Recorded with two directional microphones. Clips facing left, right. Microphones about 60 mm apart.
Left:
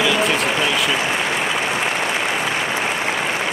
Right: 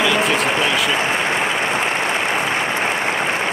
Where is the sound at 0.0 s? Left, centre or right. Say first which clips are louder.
Right 1 dB; centre.